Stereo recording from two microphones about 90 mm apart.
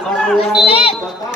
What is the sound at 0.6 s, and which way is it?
Speech, 90° left.